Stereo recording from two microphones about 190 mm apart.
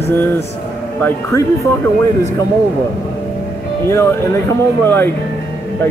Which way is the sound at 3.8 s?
15° left (ahead or behind).